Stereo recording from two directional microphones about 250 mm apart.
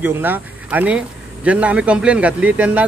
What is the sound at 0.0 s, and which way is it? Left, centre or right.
Speech, centre.